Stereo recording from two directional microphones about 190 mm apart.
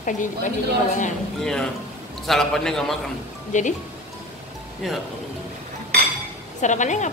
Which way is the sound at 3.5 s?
40° left (ahead or behind).